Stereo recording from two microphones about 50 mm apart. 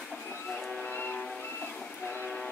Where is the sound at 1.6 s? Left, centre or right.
Left.